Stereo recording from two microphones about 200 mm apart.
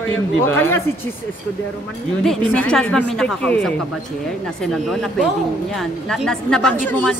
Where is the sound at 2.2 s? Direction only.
5° left (ahead or behind).